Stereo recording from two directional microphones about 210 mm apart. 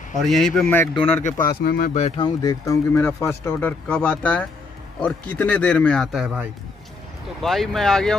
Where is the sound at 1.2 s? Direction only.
40° left (ahead or behind).